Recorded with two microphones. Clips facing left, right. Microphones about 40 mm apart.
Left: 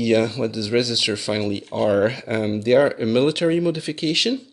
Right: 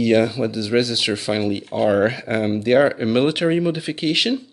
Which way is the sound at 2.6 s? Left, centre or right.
Centre.